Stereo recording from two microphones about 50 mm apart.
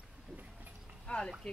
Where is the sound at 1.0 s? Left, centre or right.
Centre.